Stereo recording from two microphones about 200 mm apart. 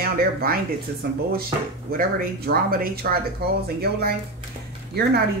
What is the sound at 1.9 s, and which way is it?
Speech, 50° right (ahead or behind).